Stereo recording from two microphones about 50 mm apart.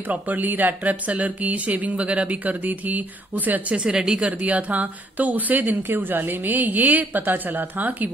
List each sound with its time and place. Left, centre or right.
0.1 s speech: right
3.7 s a woman's voice: centre
4.3 s speech: right